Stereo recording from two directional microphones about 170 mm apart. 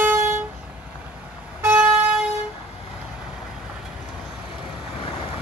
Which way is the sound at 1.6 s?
10° right (ahead or behind).